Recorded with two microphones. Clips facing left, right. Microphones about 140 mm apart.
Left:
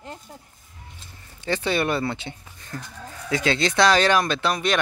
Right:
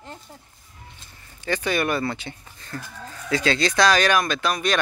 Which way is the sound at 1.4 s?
25° left (ahead or behind).